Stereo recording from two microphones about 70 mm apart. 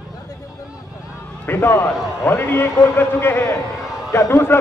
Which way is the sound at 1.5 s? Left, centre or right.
Left.